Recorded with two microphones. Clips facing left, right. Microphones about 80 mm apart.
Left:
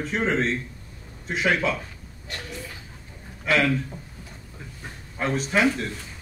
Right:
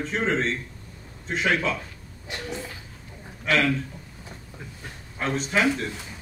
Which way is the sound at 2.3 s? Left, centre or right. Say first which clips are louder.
Right 3 dB; right.